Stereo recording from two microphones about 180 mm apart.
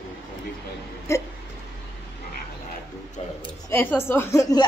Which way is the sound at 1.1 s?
15° left (ahead or behind).